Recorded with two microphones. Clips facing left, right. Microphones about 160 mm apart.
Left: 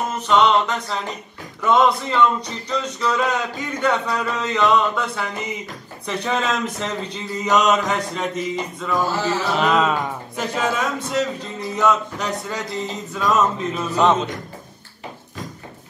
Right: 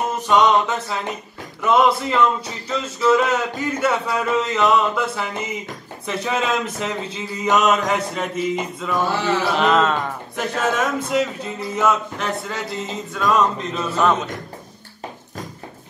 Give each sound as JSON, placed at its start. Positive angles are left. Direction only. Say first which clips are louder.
{"t": 0.3, "sound": "a capella", "louder": "even", "side_deg": -15}
{"t": 1.7, "sound": "a sound", "louder": "even", "side_deg": -5}
{"t": 13.8, "sound": "a man's voice", "louder": "left 1 dB", "side_deg": 15}